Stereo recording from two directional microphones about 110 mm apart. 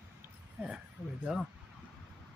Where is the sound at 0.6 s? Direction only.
10° right (ahead or behind).